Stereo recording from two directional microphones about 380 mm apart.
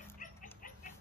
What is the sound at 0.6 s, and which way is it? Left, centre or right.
Rodents, left.